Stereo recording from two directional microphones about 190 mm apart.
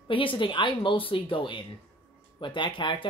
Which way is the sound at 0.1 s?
25° left (ahead or behind).